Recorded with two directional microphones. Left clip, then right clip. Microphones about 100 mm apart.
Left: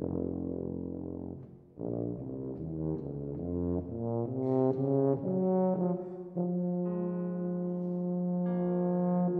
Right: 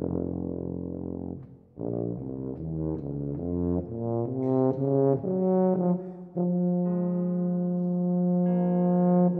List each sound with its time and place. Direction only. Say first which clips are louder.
3.5 s brass instrument: right 4 dB; 25° right (ahead or behind)
8.3 s music: right 8 dB; 20° right (ahead or behind)
8.7 s brass instrument: right 8 dB; 20° right (ahead or behind)